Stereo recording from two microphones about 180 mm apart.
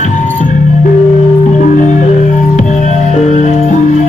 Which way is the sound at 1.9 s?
40° left (ahead or behind).